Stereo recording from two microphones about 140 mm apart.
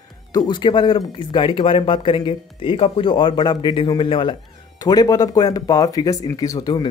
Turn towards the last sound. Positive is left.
turn(degrees=25)  # may be behind; listen again after turning